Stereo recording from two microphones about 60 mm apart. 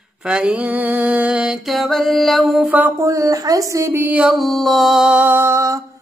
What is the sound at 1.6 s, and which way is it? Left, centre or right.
Music, centre.